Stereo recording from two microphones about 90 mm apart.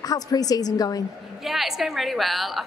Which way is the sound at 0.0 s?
45° left (ahead or behind).